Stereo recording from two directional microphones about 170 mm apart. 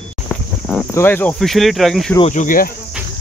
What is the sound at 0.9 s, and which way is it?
Speech, 15° left (ahead or behind).